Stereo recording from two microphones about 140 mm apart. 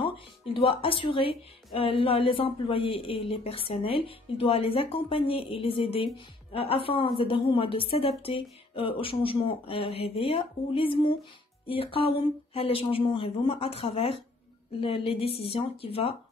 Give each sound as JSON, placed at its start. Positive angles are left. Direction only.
{"t": 0.0, "sound": "a woman's voice", "side_deg": 40}